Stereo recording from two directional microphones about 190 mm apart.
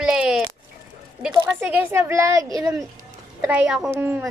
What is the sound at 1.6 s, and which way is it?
Speech, 10° right (ahead or behind).